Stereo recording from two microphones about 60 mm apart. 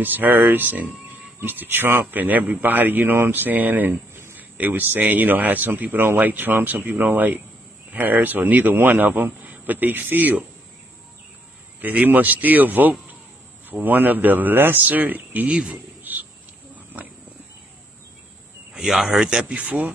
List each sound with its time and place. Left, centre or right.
0.0 s speech: right
11.8 s speech: right
15.5 s speech: centre
16.0 s cricket: right
18.8 s a man's voice: centre
19.2 s speech: centre